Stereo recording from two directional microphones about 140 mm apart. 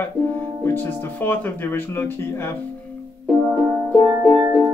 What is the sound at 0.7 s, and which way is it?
Speech, 15° left (ahead or behind).